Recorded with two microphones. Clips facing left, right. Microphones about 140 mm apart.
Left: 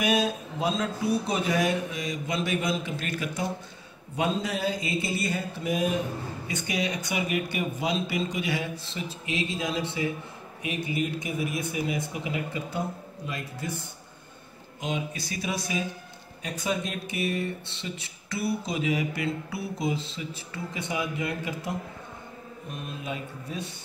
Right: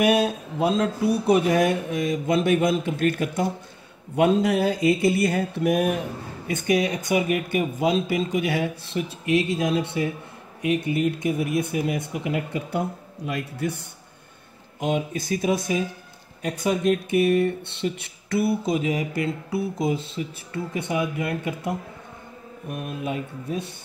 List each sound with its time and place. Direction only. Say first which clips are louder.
0.0 s speech: right 5 dB; 60° right (ahead or behind)
6.4 s speech: right 9 dB; 50° right (ahead or behind)
14.8 s speech: right 7 dB; 50° right (ahead or behind)